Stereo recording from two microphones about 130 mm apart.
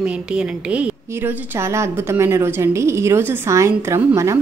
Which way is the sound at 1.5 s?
20° right (ahead or behind).